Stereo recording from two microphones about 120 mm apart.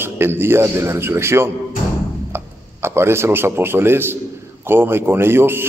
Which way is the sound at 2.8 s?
20° right (ahead or behind).